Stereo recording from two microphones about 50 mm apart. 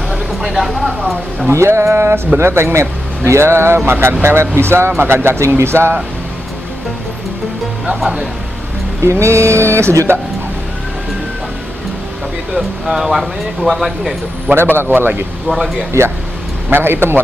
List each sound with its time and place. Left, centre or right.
0.1 s speech: centre
1.5 s speech: right
9.0 s speech: right
12.5 s speech: centre
14.5 s speech: right
15.4 s speech: centre
15.9 s speech: right
16.7 s speech: right